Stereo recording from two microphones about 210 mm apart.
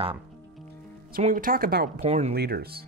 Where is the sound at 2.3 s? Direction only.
50° right (ahead or behind).